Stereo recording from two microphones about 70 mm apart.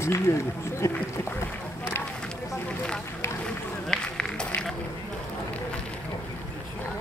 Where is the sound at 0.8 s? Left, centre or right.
Left.